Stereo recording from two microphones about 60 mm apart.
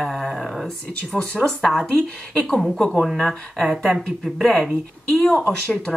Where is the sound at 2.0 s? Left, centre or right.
Centre.